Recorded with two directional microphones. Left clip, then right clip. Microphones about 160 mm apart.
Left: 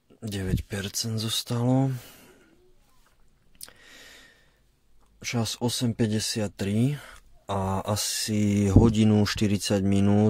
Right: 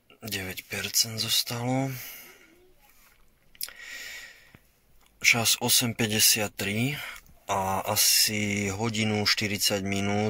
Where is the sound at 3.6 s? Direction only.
55° left (ahead or behind).